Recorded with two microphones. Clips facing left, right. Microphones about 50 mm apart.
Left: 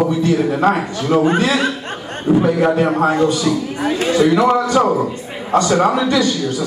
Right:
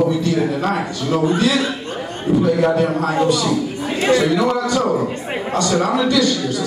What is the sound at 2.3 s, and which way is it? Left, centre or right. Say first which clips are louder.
Speech: left 2 dB; left.